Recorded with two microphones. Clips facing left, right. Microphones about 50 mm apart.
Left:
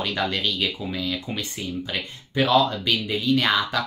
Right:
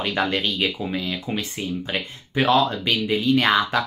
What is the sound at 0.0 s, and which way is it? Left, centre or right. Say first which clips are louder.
Speech: right 2 dB; right.